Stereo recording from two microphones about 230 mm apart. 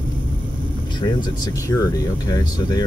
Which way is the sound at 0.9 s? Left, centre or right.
Centre.